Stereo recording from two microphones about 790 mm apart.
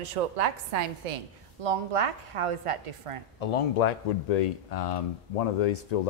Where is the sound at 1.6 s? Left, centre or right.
Right.